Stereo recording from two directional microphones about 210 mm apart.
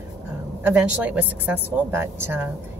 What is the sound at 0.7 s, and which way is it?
A woman's voice, 10° right (ahead or behind).